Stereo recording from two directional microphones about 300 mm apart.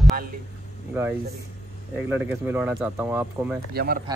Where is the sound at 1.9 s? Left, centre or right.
Centre.